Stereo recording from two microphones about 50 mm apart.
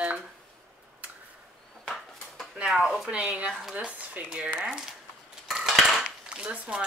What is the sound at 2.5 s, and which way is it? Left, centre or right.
Speech, centre.